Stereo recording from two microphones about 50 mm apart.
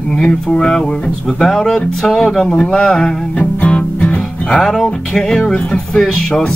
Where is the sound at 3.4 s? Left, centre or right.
Left.